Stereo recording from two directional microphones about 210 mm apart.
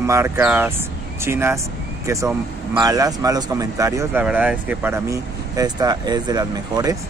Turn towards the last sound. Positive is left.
turn(degrees=-20)  # may be behind; listen again after turning